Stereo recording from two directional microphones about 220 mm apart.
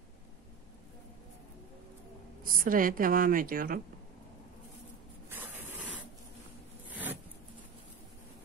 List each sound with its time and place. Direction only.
2.4 s speech: 40° right (ahead or behind)
5.3 s spray: 10° right (ahead or behind)